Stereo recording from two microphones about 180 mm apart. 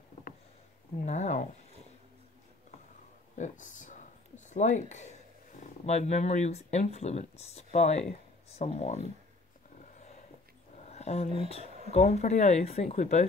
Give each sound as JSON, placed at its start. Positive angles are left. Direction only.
{"t": 1.0, "sound": "speech", "side_deg": 40}
{"t": 3.3, "sound": "speech", "side_deg": 45}
{"t": 9.9, "sound": "dog", "side_deg": 40}
{"t": 10.9, "sound": "a sound", "side_deg": 35}
{"t": 11.4, "sound": "speech", "side_deg": 35}